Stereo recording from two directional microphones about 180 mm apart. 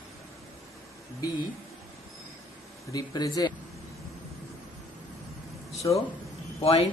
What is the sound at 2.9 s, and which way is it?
Speech, 20° left (ahead or behind).